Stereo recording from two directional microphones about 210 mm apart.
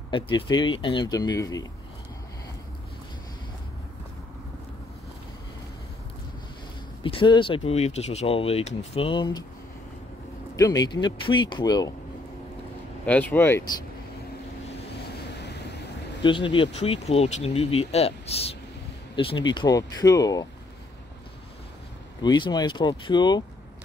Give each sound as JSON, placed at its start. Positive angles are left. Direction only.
{"t": 0.1, "sound": "speech", "side_deg": 25}
{"t": 7.0, "sound": "speech", "side_deg": 25}
{"t": 10.5, "sound": "speech", "side_deg": 15}
{"t": 13.0, "sound": "speech", "side_deg": 5}
{"t": 16.2, "sound": "speech", "side_deg": 20}
{"t": 22.2, "sound": "speech", "side_deg": 20}